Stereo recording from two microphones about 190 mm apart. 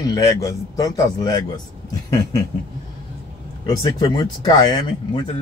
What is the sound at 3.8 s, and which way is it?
A man's voice, 25° left (ahead or behind).